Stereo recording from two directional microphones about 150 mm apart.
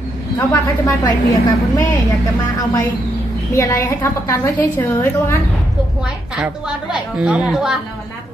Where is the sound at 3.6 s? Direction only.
20° left (ahead or behind).